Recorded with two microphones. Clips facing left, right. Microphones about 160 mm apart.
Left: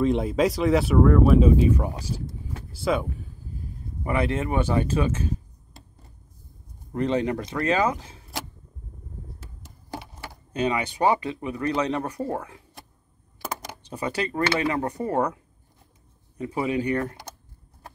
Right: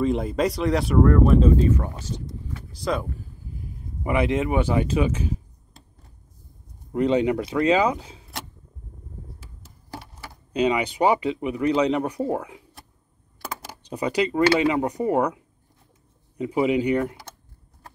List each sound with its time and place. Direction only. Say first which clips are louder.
0.0 s speech: left 1 dB; centre (ahead or behind)
2.8 s speech: left 2 dB; centre (ahead or behind)
4.0 s speech: right 3 dB; 15° right (ahead or behind)
6.9 s speech: right 4 dB; 15° right (ahead or behind)
10.5 s speech: right 4 dB; 15° right (ahead or behind)
13.8 s speech: right 5 dB; 15° right (ahead or behind)